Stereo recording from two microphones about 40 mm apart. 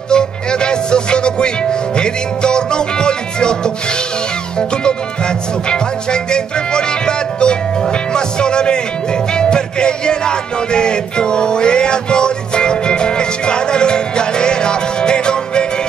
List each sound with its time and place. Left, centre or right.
0.1 s music: left